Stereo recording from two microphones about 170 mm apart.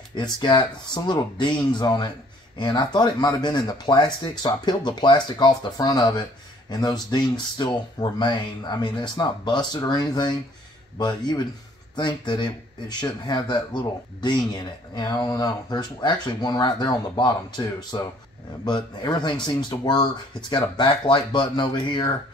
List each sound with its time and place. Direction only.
0.1 s speech: 25° left (ahead or behind)